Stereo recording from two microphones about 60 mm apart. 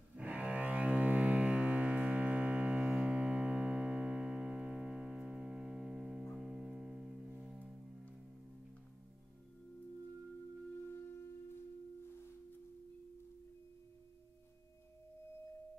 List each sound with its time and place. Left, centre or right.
0.1 s music: right
7.6 s music: centre
10.9 s music: left